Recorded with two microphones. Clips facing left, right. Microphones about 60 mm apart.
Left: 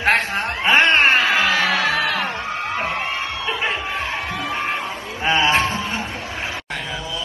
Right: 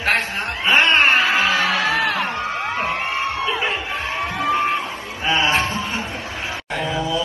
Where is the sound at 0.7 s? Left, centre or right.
Left.